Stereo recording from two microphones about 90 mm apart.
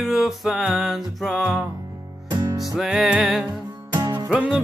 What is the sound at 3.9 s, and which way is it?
Music, 45° right (ahead or behind).